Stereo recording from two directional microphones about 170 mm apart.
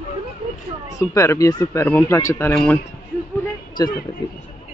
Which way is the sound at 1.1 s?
15° left (ahead or behind).